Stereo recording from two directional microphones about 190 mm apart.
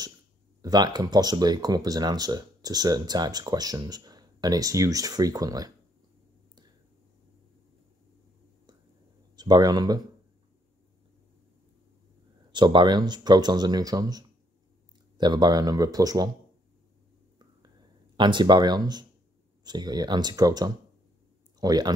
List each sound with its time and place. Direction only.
0.6 s speech: 20° right (ahead or behind)
9.4 s speech: 20° right (ahead or behind)
12.5 s speech: 25° right (ahead or behind)
18.1 s speech: 25° right (ahead or behind)